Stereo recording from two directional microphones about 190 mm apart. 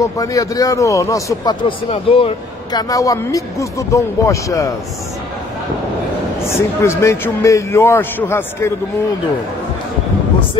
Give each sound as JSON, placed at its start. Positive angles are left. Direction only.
{"t": 0.0, "sound": "a man's voice", "side_deg": 20}
{"t": 2.9, "sound": "a man's voice", "side_deg": 15}
{"t": 6.5, "sound": "a man's voice", "side_deg": 15}